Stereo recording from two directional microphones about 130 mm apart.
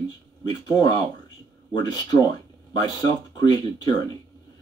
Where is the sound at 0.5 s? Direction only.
30° left (ahead or behind).